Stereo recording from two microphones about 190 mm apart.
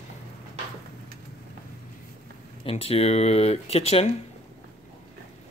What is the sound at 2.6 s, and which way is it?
Speech, 30° left (ahead or behind).